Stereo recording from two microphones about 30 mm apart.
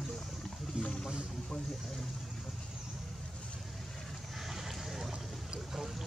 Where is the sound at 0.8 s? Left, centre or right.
Right.